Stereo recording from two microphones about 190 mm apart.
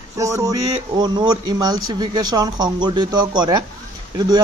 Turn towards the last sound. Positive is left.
turn(degrees=-20)  # may be behind; listen again after turning